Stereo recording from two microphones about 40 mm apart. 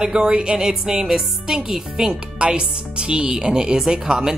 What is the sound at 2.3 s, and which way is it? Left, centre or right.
A woman's voice, right.